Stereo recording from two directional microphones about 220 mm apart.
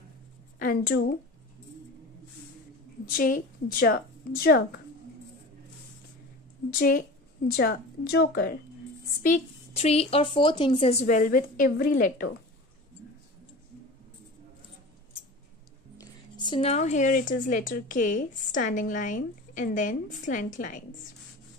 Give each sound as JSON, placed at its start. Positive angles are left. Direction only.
{"t": 0.6, "sound": "a woman's voice", "side_deg": 45}
{"t": 3.1, "sound": "a woman's voice", "side_deg": 40}
{"t": 6.7, "sound": "a woman's voice", "side_deg": 40}
{"t": 9.2, "sound": "a woman's voice", "side_deg": 30}
{"t": 16.4, "sound": "speech", "side_deg": 25}